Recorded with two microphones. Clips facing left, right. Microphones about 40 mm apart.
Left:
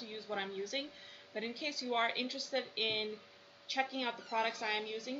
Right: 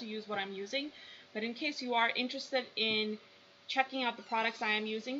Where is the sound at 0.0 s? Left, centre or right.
Centre.